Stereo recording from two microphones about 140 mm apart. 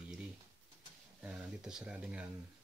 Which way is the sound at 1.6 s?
5° right (ahead or behind).